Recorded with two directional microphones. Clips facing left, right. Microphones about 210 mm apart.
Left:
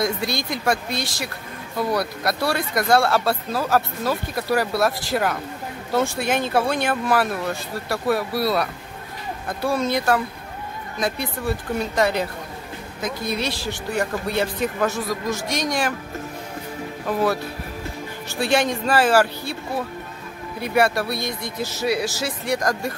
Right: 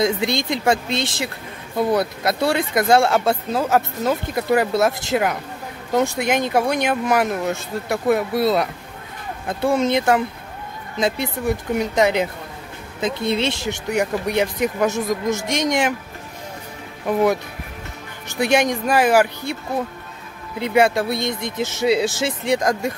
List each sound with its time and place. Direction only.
0.0 s speech: 20° right (ahead or behind)
17.0 s speech: 15° right (ahead or behind)
18.4 s speech: 15° right (ahead or behind)
20.5 s speech: 20° right (ahead or behind)